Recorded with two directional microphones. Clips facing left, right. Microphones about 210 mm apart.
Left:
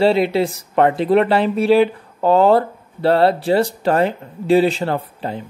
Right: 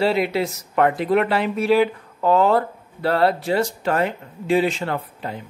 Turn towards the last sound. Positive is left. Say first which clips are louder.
# left 4 dB
turn(degrees=30)  # may be behind; listen again after turning